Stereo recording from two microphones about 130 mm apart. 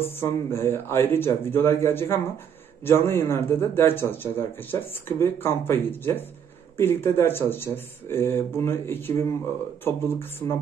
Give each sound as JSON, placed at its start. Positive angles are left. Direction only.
{"t": 0.0, "sound": "speech", "side_deg": 20}